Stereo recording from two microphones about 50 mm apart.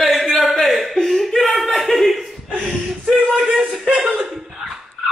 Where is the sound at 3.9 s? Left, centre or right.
Right.